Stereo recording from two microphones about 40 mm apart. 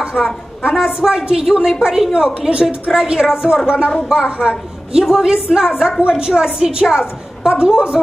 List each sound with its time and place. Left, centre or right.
0.2 s a woman's voice: centre
0.7 s a woman's voice: centre